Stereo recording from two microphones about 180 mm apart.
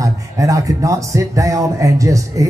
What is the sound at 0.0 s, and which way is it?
Speech, 15° right (ahead or behind).